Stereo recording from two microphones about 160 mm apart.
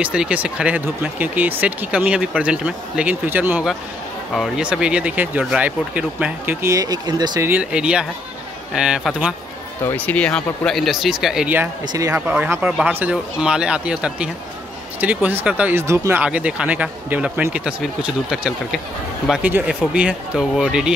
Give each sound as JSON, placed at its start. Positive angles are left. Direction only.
{"t": 0.0, "sound": "speech", "side_deg": -5}
{"t": 7.4, "sound": "speech", "side_deg": -10}
{"t": 9.8, "sound": "speech", "side_deg": 10}